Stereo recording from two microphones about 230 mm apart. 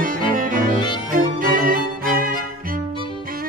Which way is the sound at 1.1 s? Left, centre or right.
Right.